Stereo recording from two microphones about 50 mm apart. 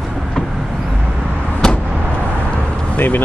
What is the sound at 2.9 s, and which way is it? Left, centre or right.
Speech, left.